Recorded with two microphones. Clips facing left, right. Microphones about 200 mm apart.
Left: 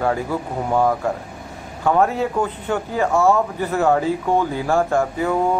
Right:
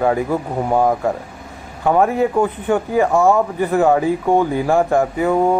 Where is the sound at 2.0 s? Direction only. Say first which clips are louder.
Right 5 dB; 15° right (ahead or behind).